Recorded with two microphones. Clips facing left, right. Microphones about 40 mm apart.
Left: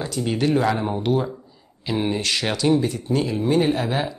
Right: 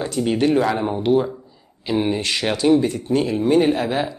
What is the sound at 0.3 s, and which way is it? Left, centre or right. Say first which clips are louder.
Speech: right 3 dB; right.